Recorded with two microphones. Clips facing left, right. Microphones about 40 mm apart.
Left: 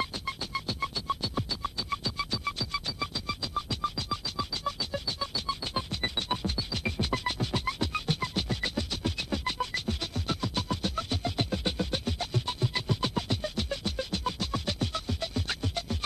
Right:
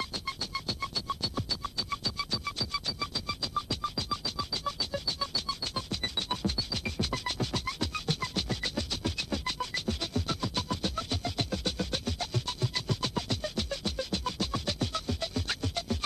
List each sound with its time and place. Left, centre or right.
0.0 s music: centre